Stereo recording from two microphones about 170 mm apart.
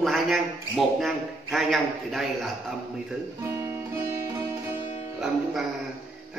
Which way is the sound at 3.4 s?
15° right (ahead or behind).